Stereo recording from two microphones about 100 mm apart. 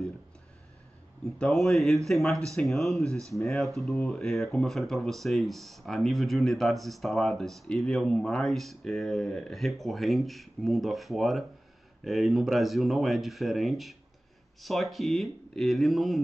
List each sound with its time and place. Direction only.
1.4 s speech: 5° left (ahead or behind)
3.1 s speech: 30° right (ahead or behind)
3.4 s speech: centre (ahead or behind)